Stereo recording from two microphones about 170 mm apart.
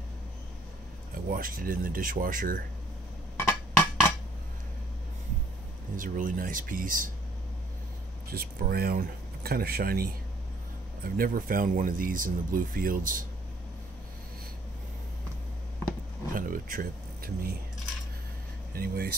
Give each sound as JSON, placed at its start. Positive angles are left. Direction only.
{"t": 1.1, "sound": "speech", "side_deg": -55}
{"t": 3.4, "sound": "a sound", "side_deg": 10}
{"t": 5.9, "sound": "speech", "side_deg": -50}
{"t": 8.3, "sound": "speech", "side_deg": -65}
{"t": 16.3, "sound": "a sound", "side_deg": -55}
{"t": 18.8, "sound": "speech", "side_deg": -60}